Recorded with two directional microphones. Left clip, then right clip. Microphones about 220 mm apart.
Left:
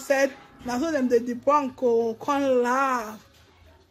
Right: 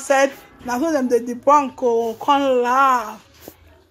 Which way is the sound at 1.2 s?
5° left (ahead or behind).